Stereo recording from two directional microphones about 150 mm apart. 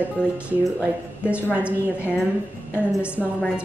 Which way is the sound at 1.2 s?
10° right (ahead or behind).